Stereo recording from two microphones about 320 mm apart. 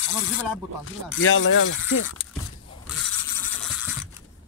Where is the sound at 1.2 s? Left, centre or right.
Left.